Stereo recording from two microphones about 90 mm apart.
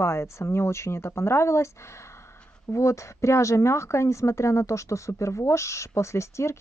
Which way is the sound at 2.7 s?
35° left (ahead or behind).